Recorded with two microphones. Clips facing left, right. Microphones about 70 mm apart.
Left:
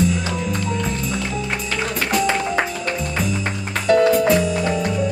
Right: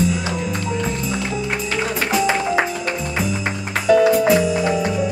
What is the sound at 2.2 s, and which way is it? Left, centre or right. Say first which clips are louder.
Music: right 2 dB; centre.